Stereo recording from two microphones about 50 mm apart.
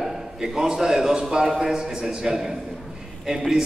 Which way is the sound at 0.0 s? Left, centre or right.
Centre.